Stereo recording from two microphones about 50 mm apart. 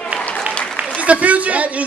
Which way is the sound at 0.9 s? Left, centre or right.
Right.